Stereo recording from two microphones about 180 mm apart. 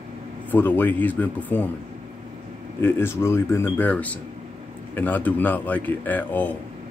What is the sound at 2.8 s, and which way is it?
Speech, 15° left (ahead or behind).